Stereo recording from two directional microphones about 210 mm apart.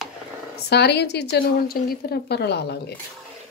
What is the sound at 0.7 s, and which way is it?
A woman's voice, 50° left (ahead or behind).